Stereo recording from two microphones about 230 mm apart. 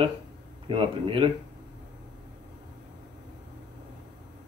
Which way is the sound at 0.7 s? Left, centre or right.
Right.